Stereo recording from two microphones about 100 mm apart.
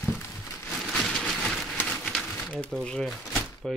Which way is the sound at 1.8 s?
5° left (ahead or behind).